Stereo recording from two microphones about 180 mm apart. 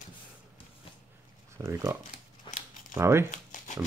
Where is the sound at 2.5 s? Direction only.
25° left (ahead or behind).